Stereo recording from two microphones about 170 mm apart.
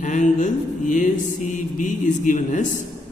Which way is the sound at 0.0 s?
45° left (ahead or behind).